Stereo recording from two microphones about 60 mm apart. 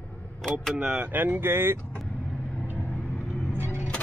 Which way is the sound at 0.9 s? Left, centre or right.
Right.